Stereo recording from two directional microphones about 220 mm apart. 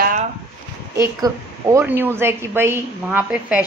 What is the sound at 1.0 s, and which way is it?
Speech, 10° right (ahead or behind).